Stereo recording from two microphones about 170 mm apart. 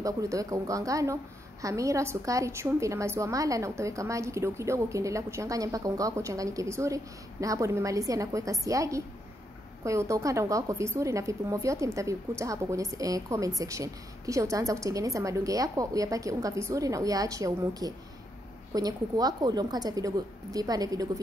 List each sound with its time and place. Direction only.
0.0 s a woman's voice: 20° right (ahead or behind)